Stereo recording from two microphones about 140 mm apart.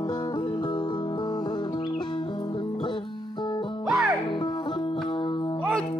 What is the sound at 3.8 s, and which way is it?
Music, 10° right (ahead or behind).